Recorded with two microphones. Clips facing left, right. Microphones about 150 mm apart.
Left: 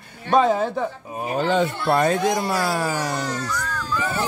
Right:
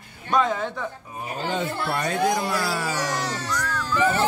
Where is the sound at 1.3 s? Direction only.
55° left (ahead or behind).